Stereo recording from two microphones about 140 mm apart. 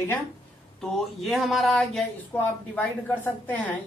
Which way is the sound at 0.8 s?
Centre (ahead or behind).